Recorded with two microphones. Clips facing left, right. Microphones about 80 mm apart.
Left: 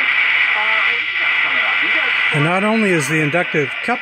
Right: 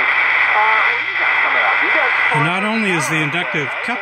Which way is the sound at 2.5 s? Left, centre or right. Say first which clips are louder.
Left 3 dB; left.